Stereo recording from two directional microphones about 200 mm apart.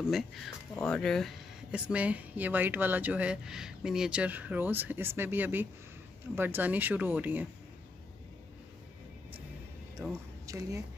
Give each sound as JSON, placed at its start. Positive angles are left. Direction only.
{"t": 0.0, "sound": "speech", "side_deg": 0}
{"t": 10.4, "sound": "a woman's voice", "side_deg": -15}